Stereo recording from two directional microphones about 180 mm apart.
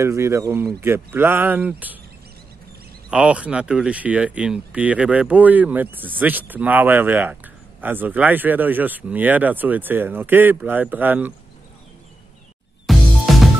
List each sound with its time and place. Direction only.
0.0 s speech: 15° right (ahead or behind)
3.1 s speech: 5° right (ahead or behind)
12.8 s music: centre (ahead or behind)